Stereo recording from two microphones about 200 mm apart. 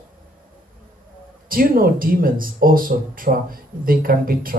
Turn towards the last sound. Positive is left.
turn(degrees=-45)  # may be behind; listen again after turning